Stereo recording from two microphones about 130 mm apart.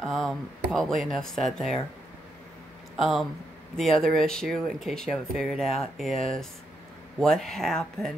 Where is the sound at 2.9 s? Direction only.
Centre (ahead or behind).